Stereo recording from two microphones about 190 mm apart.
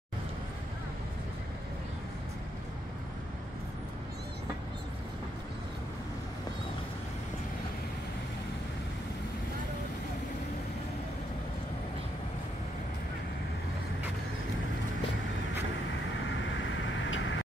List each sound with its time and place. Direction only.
16.5 s vehicle: 80° left